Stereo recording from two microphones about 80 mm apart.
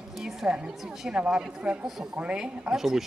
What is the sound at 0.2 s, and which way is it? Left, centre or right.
Speech, centre.